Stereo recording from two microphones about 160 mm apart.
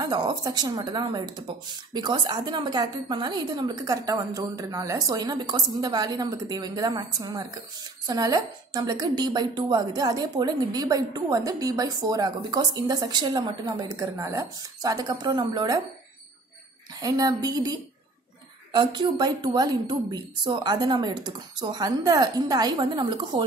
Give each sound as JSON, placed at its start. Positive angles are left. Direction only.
{"t": 0.0, "sound": "a woman's voice", "side_deg": -25}
{"t": 17.0, "sound": "a woman's voice", "side_deg": -25}
{"t": 18.7, "sound": "a woman's voice", "side_deg": -30}